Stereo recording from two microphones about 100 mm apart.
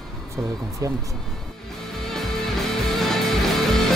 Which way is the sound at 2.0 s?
5° left (ahead or behind).